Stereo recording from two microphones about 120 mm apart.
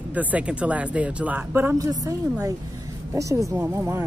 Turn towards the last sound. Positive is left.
turn(degrees=-20)  # may be behind; listen again after turning